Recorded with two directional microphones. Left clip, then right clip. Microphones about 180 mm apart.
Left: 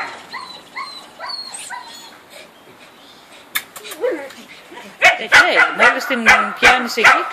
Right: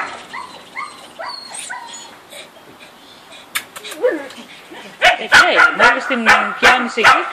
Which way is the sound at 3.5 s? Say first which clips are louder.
Even; centre (ahead or behind).